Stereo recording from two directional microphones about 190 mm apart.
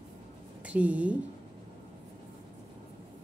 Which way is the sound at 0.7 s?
5° right (ahead or behind).